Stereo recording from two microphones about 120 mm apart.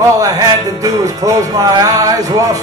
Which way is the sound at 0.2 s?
30° right (ahead or behind).